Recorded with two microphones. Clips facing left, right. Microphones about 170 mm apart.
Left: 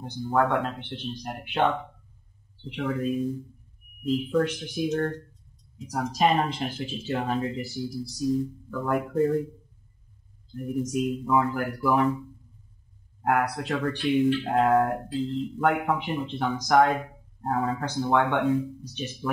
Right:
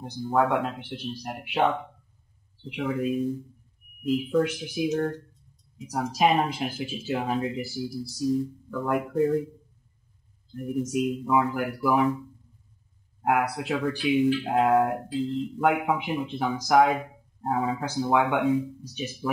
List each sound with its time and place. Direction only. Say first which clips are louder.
0.0 s speech: even; 5° right (ahead or behind)
10.5 s speech: even; centre (ahead or behind)